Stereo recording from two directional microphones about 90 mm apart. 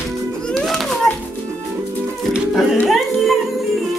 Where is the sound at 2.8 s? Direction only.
Centre (ahead or behind).